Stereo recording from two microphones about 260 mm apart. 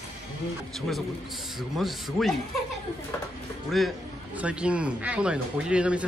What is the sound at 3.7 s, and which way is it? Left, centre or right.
Speech, centre.